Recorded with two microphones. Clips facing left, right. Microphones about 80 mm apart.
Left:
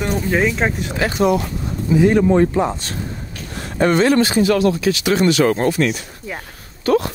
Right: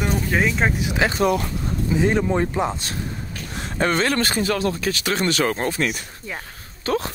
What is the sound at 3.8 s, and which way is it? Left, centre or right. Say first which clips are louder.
Speech: left 6 dB; left.